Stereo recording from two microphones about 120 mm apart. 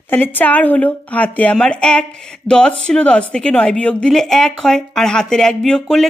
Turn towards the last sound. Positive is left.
turn(degrees=5)  # may be behind; listen again after turning